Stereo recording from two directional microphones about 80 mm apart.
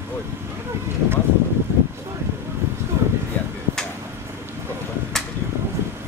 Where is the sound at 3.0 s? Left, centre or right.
Right.